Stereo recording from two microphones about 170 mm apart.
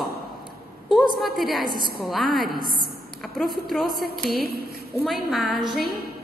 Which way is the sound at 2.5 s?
60° right (ahead or behind).